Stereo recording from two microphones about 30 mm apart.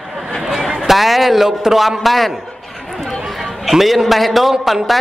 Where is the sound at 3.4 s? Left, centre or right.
Centre.